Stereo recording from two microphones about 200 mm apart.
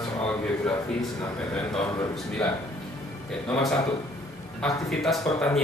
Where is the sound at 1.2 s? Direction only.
5° left (ahead or behind).